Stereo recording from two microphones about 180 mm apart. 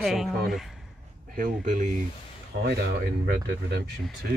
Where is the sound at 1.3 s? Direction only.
45° right (ahead or behind).